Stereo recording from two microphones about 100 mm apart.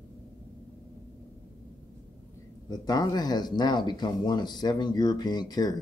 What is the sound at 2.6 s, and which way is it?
Speech, 45° left (ahead or behind).